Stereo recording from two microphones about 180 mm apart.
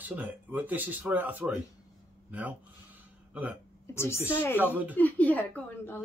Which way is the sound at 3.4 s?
10° right (ahead or behind).